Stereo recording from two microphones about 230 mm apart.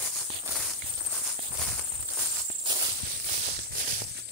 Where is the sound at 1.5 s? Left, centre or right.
Centre.